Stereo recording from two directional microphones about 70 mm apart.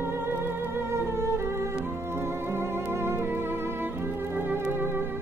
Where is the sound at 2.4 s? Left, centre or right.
Right.